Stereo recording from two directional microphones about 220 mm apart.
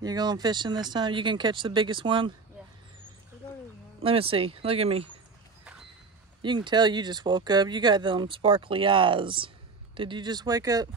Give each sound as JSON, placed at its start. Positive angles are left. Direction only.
{"t": 0.0, "sound": "speech", "side_deg": -20}
{"t": 4.0, "sound": "speech", "side_deg": -25}
{"t": 6.4, "sound": "speech", "side_deg": -20}